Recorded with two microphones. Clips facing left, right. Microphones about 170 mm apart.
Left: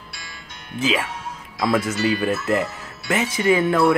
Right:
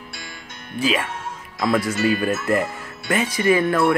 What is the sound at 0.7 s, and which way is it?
Speech, 20° left (ahead or behind).